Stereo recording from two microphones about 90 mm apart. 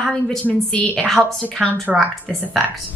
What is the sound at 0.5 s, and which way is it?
A woman's voice, 5° right (ahead or behind).